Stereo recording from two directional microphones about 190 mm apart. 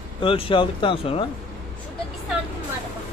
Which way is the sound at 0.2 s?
25° left (ahead or behind).